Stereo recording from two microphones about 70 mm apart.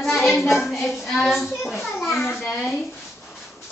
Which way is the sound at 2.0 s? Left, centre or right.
Centre.